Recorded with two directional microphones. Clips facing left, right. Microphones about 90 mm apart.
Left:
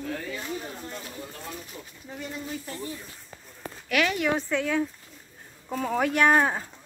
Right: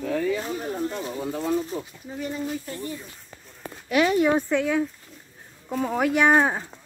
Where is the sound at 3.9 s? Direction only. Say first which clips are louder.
Right 5 dB; 30° right (ahead or behind).